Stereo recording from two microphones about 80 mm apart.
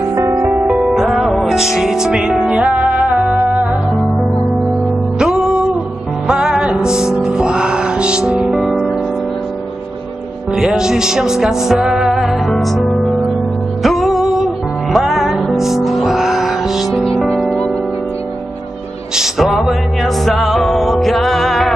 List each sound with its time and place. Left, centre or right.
0.1 s music: right
0.4 s music: right
0.7 s music: centre
5.2 s music: centre
10.5 s music: centre
19.1 s music: centre